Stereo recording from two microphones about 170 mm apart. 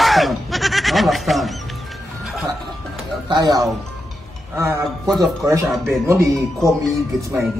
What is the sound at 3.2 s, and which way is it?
Speech, 25° right (ahead or behind).